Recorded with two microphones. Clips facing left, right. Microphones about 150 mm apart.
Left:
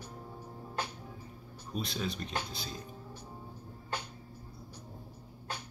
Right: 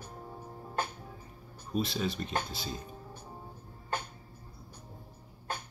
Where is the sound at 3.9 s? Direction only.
50° right (ahead or behind).